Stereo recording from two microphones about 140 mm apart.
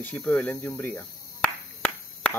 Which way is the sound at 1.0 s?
5° left (ahead or behind).